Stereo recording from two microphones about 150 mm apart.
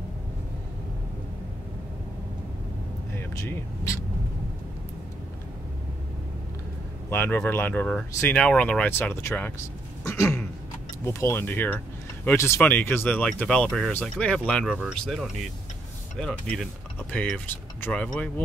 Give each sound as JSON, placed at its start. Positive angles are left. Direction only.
{"t": 7.1, "sound": "speech", "side_deg": 10}
{"t": 10.0, "sound": "a sound", "side_deg": 20}
{"t": 11.1, "sound": "speech", "side_deg": 15}